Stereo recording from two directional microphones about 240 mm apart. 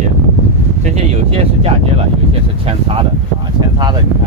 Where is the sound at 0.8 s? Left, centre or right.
Right.